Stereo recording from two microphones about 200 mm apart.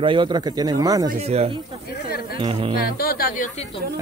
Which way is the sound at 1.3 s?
30° right (ahead or behind).